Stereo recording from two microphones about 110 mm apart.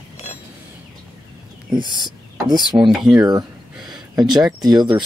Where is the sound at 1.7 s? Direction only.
45° right (ahead or behind).